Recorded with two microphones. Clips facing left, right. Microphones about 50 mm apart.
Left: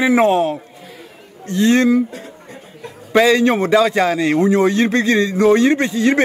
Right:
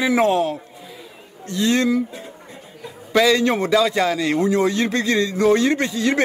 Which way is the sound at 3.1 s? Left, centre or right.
Left.